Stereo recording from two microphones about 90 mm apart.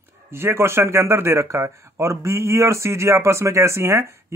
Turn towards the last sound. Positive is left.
turn(degrees=-30)  # may be behind; listen again after turning